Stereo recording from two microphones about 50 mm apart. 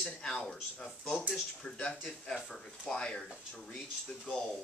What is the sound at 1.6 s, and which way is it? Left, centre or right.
Speech, centre.